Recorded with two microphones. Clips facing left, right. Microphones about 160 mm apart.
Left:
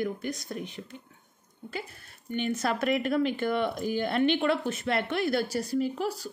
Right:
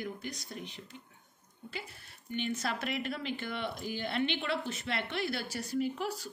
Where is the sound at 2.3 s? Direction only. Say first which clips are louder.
Left 6 dB; 50° left (ahead or behind).